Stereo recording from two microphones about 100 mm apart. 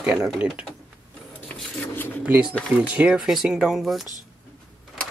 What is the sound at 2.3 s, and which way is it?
Speech, 10° right (ahead or behind).